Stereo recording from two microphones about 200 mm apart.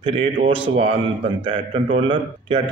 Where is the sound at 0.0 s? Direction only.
30° right (ahead or behind).